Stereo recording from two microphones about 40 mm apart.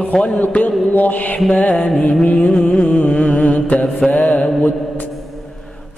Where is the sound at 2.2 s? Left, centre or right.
Left.